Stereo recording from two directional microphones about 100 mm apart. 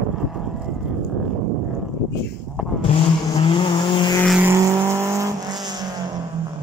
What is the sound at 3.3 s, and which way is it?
Vehicle, 60° left (ahead or behind).